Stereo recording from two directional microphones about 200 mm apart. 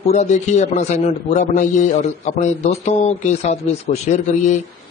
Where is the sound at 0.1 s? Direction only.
35° left (ahead or behind).